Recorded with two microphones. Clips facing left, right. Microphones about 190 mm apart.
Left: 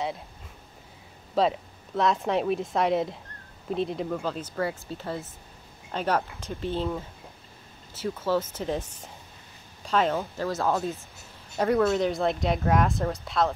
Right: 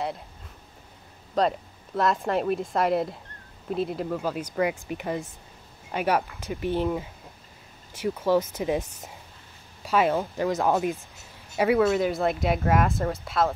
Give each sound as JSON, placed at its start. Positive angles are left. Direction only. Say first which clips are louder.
{"t": 1.3, "sound": "speech", "louder": "even", "side_deg": 0}